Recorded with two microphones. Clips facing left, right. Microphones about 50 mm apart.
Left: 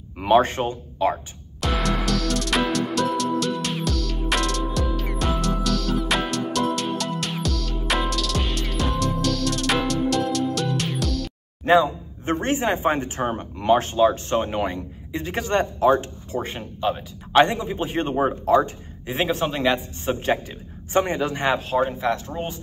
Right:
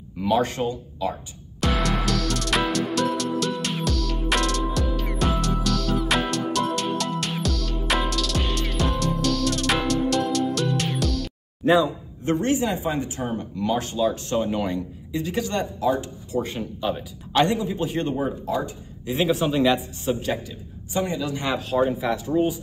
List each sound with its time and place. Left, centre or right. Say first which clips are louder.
0.2 s speech: left 4 dB; left
1.6 s music: even; centre
12.3 s speech: even; left
19.1 s speech: even; left
19.4 s a man's voice: right 2 dB; centre
20.1 s speech: left 2 dB; left
21.6 s a man's voice: even; centre
21.9 s speech: left 1 dB; centre